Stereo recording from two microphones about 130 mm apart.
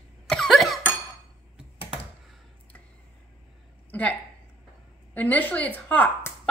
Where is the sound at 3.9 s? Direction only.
10° left (ahead or behind).